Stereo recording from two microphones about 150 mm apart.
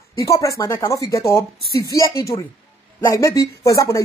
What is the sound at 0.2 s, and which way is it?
A woman's voice, 20° left (ahead or behind).